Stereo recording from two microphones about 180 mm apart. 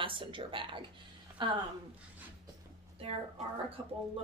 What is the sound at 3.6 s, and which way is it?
Speech, 30° right (ahead or behind).